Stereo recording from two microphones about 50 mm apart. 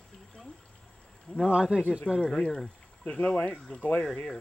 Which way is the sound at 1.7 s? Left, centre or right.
Right.